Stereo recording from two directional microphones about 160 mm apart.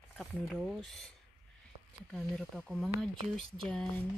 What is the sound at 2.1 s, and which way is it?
Speech, 5° left (ahead or behind).